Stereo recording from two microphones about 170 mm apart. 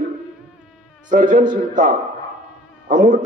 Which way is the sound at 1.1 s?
50° right (ahead or behind).